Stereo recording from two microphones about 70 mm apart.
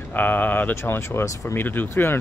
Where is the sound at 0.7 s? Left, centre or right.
Left.